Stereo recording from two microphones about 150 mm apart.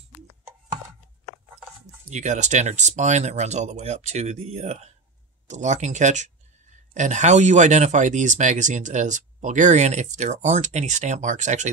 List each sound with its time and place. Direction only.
2.0 s speech: 50° right (ahead or behind)